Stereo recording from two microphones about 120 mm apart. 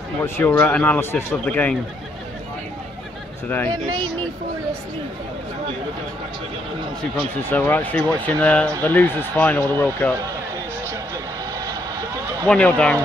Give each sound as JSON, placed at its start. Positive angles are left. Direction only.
{"t": 0.2, "sound": "speech", "side_deg": 15}
{"t": 3.4, "sound": "speech", "side_deg": 15}
{"t": 7.4, "sound": "speech", "side_deg": 15}
{"t": 12.4, "sound": "speech", "side_deg": 10}